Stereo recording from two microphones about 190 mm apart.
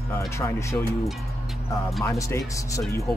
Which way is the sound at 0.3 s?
15° left (ahead or behind).